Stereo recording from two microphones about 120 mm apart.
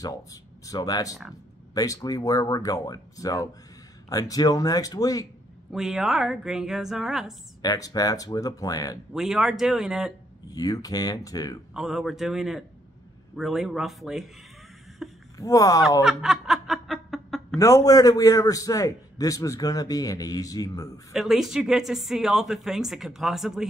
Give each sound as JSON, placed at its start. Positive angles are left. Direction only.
{"t": 0.0, "sound": "speech", "side_deg": 30}
{"t": 5.7, "sound": "speech", "side_deg": -5}
{"t": 7.6, "sound": "speech", "side_deg": 30}
{"t": 9.1, "sound": "speech", "side_deg": -5}
{"t": 10.5, "sound": "speech", "side_deg": 30}
{"t": 11.7, "sound": "speech", "side_deg": -5}
{"t": 15.0, "sound": "a sound", "side_deg": -5}
{"t": 15.3, "sound": "a man's voice", "side_deg": 30}
{"t": 16.0, "sound": "snicker", "side_deg": -5}
{"t": 17.6, "sound": "a man's voice", "side_deg": 25}
{"t": 21.1, "sound": "speech", "side_deg": -5}